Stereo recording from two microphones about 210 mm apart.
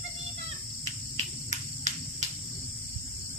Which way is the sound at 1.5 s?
35° right (ahead or behind).